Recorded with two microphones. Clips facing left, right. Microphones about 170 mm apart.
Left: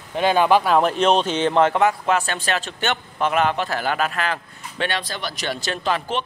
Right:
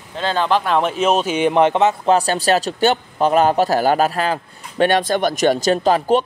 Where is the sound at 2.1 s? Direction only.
35° right (ahead or behind).